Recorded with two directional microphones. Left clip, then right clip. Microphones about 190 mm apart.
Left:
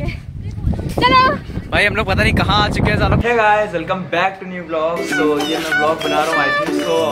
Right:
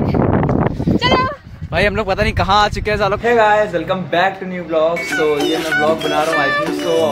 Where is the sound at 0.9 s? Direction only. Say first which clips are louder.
Left 4 dB; 50° left (ahead or behind).